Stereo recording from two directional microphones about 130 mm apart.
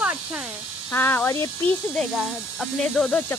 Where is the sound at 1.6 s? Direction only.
5° left (ahead or behind).